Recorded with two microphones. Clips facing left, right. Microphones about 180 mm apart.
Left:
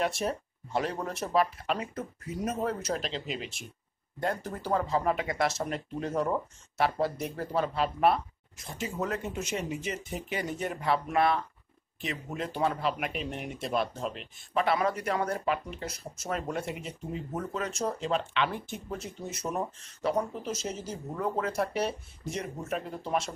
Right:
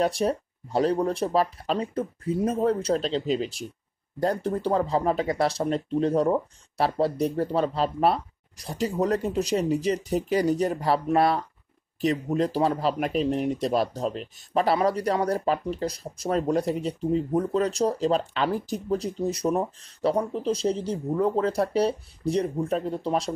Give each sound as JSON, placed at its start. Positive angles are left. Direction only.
{"t": 0.0, "sound": "speech", "side_deg": -35}